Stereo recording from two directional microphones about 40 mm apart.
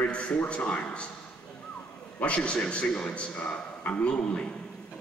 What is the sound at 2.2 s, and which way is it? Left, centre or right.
A man's voice, left.